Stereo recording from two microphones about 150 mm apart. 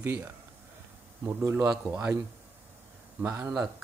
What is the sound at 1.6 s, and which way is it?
Speech, 10° right (ahead or behind).